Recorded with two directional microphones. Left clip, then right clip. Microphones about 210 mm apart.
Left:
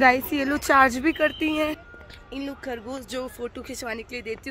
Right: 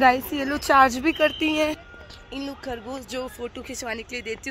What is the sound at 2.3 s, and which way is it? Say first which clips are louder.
A woman's voice: even; 15° left (ahead or behind).